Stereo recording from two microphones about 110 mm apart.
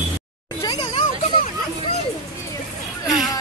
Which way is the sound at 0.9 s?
65° left (ahead or behind).